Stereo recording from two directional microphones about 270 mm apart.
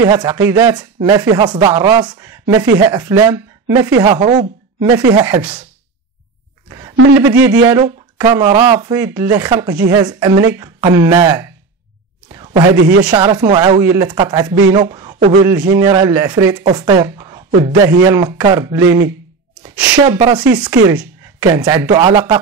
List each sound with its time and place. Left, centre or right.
0.0 s speech: centre
7.2 s speech: centre
12.3 s a sound: centre
13.1 s speech: centre